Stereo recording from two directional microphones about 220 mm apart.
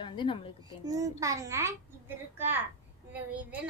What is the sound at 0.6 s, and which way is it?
A child's voice, 15° right (ahead or behind).